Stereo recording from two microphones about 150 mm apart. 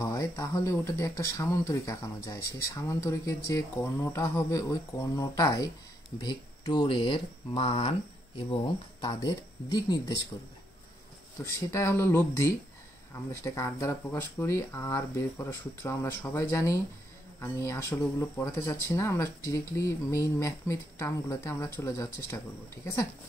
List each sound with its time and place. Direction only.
0.0 s speech: 20° left (ahead or behind); by 7.9 s 40° left (ahead or behind)
9.0 s speech: 25° left (ahead or behind)
11.4 s speech: 15° left (ahead or behind)